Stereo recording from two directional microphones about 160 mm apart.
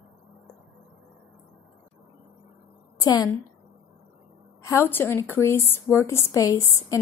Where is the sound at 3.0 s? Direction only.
20° left (ahead or behind).